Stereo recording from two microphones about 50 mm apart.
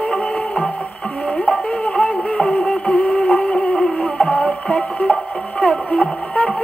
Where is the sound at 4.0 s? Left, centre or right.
Left.